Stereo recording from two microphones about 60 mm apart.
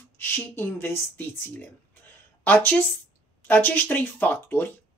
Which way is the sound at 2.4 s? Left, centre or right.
Left.